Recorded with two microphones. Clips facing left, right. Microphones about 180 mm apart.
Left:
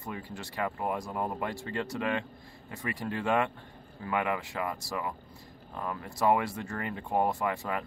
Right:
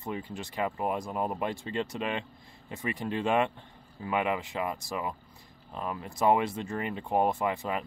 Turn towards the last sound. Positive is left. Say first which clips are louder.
# right 1 dB
turn(degrees=-20)  # may be behind; listen again after turning